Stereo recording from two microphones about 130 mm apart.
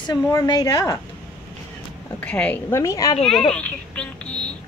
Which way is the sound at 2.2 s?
10° left (ahead or behind).